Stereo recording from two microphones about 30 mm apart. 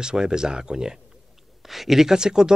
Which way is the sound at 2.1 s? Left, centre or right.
Right.